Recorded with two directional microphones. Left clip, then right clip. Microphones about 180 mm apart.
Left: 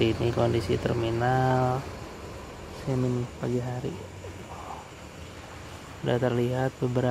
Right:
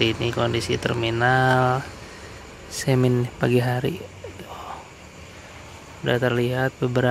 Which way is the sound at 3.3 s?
20° right (ahead or behind).